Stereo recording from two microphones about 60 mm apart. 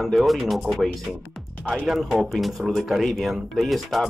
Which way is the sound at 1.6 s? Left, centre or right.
Centre.